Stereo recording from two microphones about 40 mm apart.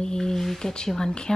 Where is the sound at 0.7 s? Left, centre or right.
Centre.